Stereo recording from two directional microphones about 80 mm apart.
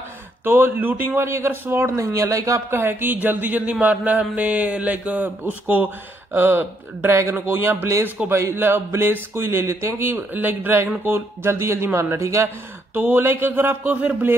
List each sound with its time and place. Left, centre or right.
0.5 s speech: right
2.7 s speech: right